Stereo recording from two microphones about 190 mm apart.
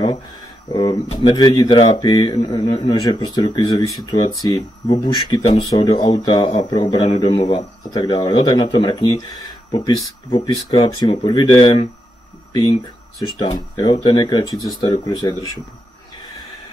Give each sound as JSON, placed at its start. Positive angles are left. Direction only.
{"t": 0.7, "sound": "speech", "side_deg": 25}